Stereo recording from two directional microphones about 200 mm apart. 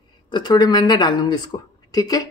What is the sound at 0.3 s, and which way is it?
Speech, 20° left (ahead or behind).